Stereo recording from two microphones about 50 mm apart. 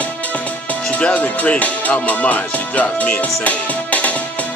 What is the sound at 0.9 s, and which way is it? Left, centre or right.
Music, left.